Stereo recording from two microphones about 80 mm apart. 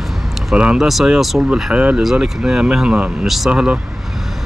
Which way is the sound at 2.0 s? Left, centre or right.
Centre.